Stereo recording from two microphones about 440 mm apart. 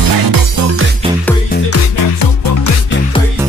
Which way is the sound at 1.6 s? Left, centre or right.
Left.